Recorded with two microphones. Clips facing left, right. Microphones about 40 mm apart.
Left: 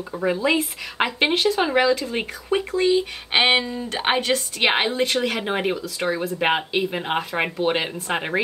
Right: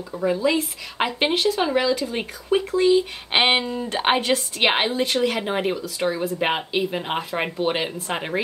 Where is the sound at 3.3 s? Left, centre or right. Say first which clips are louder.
Left 1 dB; centre.